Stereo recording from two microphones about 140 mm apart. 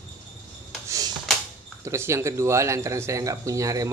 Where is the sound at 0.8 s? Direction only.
25° right (ahead or behind).